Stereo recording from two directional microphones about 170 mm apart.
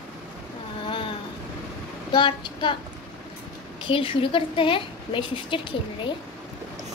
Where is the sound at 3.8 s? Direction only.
30° left (ahead or behind).